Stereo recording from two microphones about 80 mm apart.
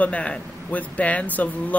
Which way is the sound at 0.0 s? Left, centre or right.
Centre.